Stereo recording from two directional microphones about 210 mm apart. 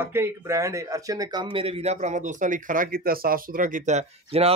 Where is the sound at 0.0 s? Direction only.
10° right (ahead or behind).